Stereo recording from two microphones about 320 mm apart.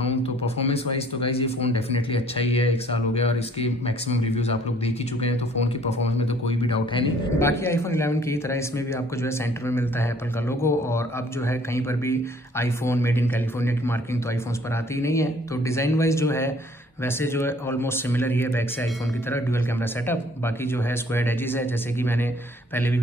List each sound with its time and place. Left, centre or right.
0.0 s a man's voice: centre